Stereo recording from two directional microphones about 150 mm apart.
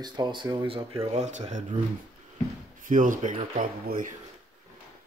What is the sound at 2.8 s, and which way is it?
Speech, 60° right (ahead or behind).